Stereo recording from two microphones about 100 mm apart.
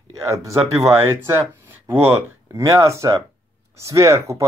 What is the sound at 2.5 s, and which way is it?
Speech, 30° right (ahead or behind).